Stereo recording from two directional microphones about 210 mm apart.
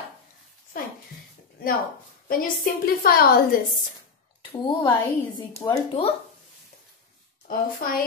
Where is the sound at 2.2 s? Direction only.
45° left (ahead or behind).